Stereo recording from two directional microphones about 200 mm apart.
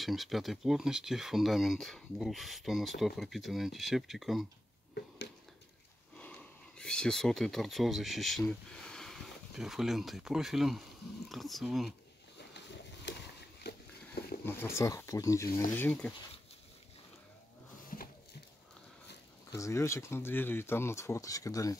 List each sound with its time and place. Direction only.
0.0 s speech: centre (ahead or behind)
6.1 s speech: 5° left (ahead or behind)
12.4 s a sound: 60° left (ahead or behind)
14.4 s speech: 10° left (ahead or behind)
17.9 s a sound: 45° left (ahead or behind)
19.5 s speech: 15° left (ahead or behind)